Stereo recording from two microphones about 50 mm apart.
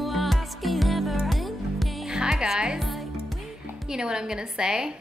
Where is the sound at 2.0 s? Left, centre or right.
Centre.